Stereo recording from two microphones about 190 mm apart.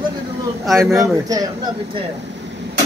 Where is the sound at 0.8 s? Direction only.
15° right (ahead or behind).